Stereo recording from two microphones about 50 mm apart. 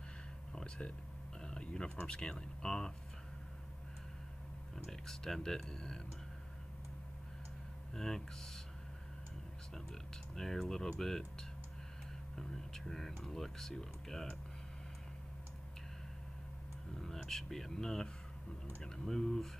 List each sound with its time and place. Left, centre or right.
1.4 s typing: centre
2.0 s speech: centre
5.0 s speech: centre
7.9 s speech: centre
10.3 s speech: centre
12.4 s whispering: centre
13.2 s speech: centre
17.0 s speech: centre